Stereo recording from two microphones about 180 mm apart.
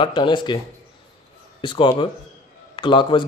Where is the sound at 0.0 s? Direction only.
25° left (ahead or behind).